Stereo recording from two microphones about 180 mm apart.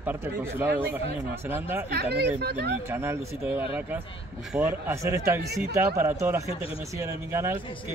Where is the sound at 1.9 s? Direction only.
65° right (ahead or behind).